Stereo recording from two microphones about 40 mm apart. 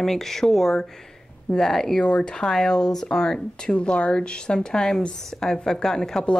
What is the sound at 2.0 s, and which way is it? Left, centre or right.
Speech, left.